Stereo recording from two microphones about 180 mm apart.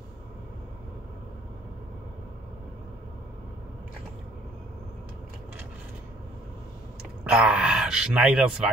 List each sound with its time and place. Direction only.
7.2 s speech: 5° right (ahead or behind)